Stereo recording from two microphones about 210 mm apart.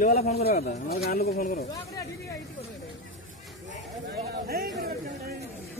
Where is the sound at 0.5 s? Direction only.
45° left (ahead or behind).